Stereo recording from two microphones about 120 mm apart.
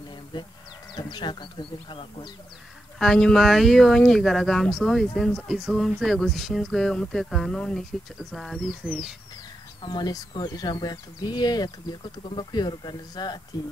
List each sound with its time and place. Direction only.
0.9 s speech: 40° left (ahead or behind)
3.0 s speech: 5° left (ahead or behind)
9.8 s speech: 35° left (ahead or behind)